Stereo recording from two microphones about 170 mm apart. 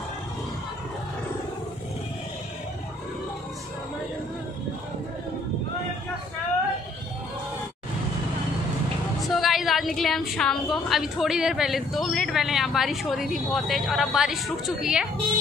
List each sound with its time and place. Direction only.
9.2 s a woman's voice: centre (ahead or behind)